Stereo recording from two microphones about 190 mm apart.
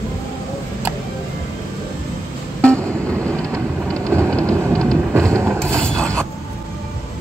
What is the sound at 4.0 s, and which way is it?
Vehicle, 15° right (ahead or behind).